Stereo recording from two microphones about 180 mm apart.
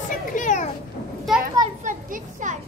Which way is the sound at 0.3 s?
45° left (ahead or behind).